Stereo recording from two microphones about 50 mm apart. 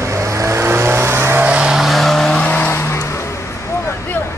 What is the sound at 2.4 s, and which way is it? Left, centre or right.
Vehicle, left.